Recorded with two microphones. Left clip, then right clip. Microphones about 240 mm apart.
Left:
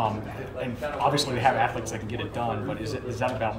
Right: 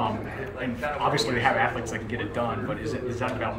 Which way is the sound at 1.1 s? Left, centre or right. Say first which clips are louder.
Right 1 dB; left.